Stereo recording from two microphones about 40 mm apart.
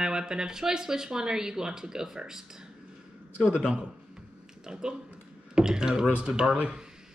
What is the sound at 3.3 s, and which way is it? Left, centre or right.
A man's voice, right.